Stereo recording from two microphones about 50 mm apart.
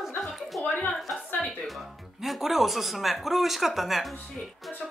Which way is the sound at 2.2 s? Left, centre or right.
Centre.